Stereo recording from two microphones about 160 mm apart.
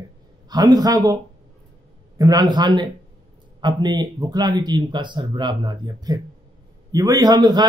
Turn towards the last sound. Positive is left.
turn(degrees=-25)  # may be behind; listen again after turning